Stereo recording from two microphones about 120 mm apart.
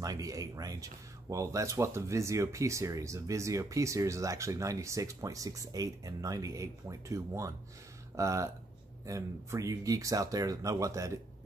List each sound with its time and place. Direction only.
0.0 s speech: 30° right (ahead or behind)